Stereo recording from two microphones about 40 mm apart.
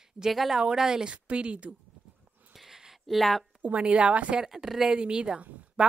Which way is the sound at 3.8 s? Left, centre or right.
Right.